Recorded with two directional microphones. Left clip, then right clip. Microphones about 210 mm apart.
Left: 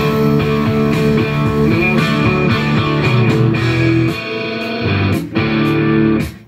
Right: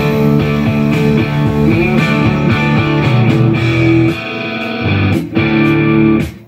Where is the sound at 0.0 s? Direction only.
15° right (ahead or behind).